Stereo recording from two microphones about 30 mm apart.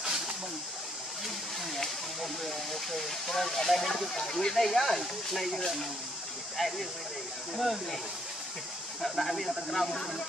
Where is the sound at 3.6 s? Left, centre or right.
Centre.